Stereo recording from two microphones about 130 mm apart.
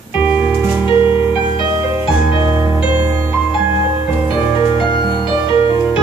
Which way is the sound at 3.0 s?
30° right (ahead or behind).